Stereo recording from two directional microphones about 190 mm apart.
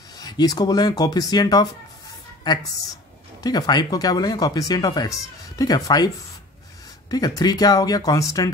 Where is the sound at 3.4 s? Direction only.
20° left (ahead or behind).